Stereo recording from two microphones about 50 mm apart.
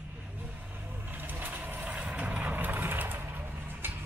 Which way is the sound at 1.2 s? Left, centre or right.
Right.